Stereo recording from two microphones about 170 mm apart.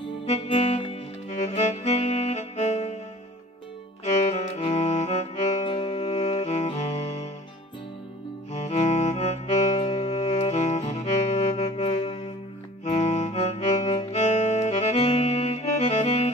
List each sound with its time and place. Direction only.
0.3 s music: 40° left (ahead or behind)
4.0 s music: 40° left (ahead or behind)
8.5 s music: 40° left (ahead or behind)